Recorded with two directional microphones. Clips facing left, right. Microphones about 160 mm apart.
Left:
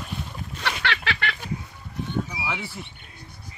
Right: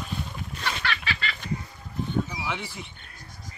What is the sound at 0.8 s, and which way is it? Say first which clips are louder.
Goose: left 3 dB; 70° left (ahead or behind).